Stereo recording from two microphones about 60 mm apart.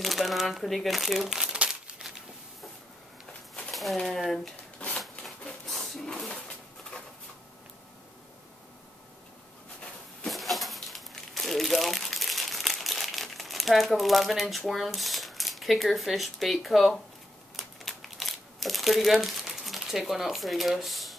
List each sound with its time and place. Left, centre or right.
0.0 s speech: centre
1.7 s crumpling: centre
3.7 s speech: centre
4.7 s a sound: left
5.7 s a sound: centre
10.2 s crumpling: centre